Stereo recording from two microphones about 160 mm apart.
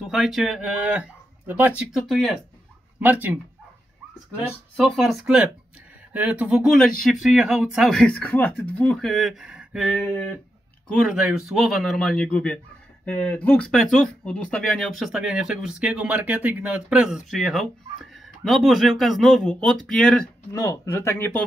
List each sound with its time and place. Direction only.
0.0 s speech: centre (ahead or behind)
3.0 s speech: 10° right (ahead or behind)
4.7 s speech: centre (ahead or behind)
9.9 s speech: 10° left (ahead or behind)
20.5 s speech: 20° left (ahead or behind)